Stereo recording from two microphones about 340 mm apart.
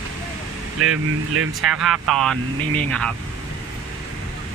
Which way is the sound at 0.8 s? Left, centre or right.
Right.